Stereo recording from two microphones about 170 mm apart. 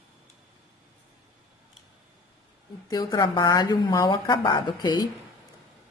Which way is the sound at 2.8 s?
20° left (ahead or behind).